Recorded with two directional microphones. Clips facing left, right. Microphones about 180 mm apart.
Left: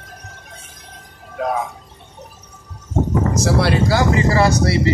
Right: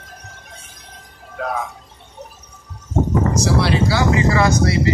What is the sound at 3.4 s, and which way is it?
Speech, 55° left (ahead or behind).